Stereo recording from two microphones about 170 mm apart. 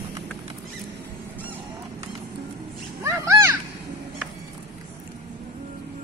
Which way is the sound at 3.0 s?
15° right (ahead or behind).